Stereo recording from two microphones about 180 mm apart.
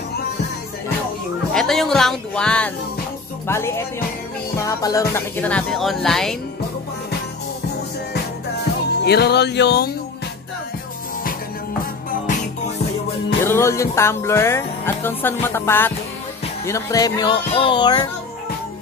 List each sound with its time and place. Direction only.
1.5 s speech: centre (ahead or behind)
3.4 s music: 15° left (ahead or behind)
9.0 s speech: 65° left (ahead or behind)
13.4 s music: 15° left (ahead or behind)
16.6 s speech: 20° left (ahead or behind)